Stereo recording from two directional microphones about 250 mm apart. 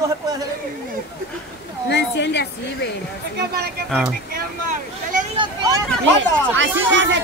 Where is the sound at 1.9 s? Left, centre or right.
Left.